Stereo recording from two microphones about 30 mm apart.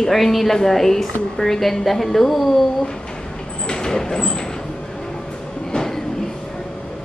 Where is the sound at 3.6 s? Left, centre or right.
Left.